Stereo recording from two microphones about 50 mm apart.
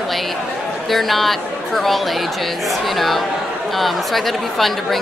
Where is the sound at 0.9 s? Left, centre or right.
Centre.